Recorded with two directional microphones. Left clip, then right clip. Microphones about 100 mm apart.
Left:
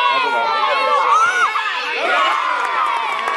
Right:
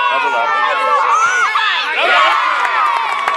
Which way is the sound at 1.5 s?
25° right (ahead or behind).